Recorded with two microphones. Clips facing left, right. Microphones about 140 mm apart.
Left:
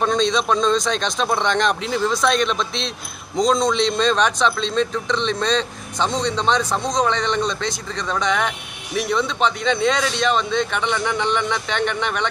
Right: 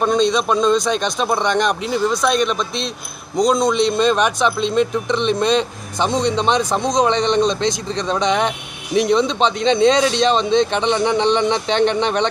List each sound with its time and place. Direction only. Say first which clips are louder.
0.0 s a man's voice: right 3 dB; 5° right (ahead or behind); by 12.3 s 25° right (ahead or behind)